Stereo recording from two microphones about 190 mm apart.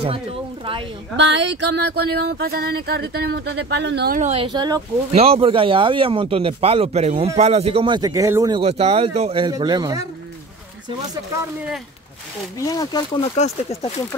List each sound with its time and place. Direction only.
1.1 s speech: 70° right (ahead or behind)
4.2 s speech: 30° right (ahead or behind)
5.1 s speech: 30° right (ahead or behind)
12.5 s speech: 20° left (ahead or behind)
13.4 s speech: 35° left (ahead or behind)